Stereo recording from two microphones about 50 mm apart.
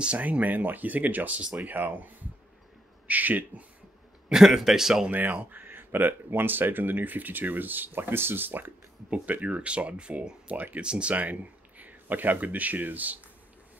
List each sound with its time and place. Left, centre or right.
0.2 s speech: right
4.3 s a man's voice: centre
5.1 s speech: right
5.6 s a sound: right
5.9 s speech: right
9.1 s speech: right